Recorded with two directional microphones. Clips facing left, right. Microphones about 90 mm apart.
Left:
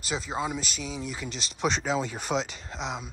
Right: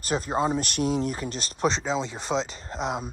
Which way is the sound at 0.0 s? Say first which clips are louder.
Right 5 dB; 45° right (ahead or behind).